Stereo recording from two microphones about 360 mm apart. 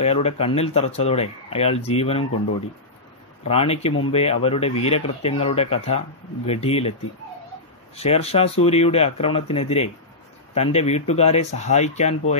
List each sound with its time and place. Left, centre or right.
0.0 s speech: centre
3.4 s speech: centre
7.9 s speech: centre